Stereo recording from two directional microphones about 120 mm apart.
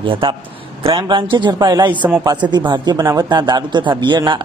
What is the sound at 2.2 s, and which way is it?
Speech, 35° right (ahead or behind).